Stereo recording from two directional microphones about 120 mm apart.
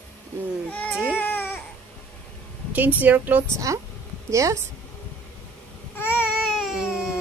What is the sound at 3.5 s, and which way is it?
Speech, 25° right (ahead or behind).